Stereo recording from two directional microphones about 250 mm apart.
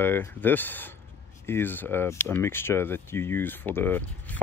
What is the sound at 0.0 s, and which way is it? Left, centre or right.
Speech, centre.